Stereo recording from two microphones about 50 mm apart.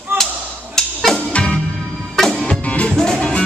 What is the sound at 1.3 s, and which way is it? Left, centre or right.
Music, left.